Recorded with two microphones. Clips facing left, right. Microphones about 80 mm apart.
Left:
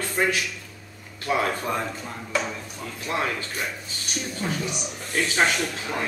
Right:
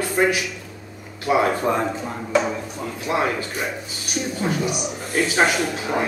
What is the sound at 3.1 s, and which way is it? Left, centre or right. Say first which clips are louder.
A man's voice: right 5 dB; centre.